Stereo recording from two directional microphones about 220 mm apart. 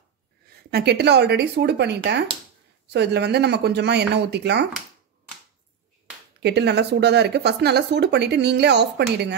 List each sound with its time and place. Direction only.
0.7 s speech: 50° right (ahead or behind)
6.4 s speech: 50° right (ahead or behind)